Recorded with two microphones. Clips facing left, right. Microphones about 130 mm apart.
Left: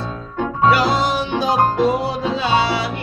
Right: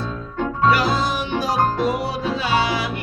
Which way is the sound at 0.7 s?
30° left (ahead or behind).